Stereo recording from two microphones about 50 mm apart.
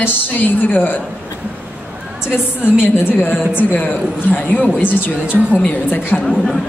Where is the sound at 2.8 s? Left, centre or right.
Left.